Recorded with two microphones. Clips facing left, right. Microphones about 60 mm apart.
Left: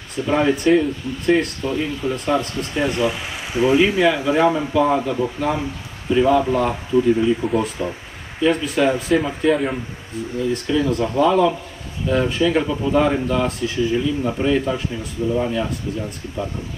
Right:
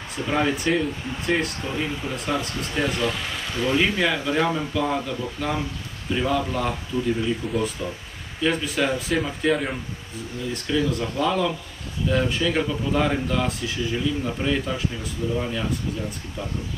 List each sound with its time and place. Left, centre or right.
0.1 s speech: centre
6.9 s speech: left
7.4 s speech: centre
8.4 s speech: centre
10.9 s speech: centre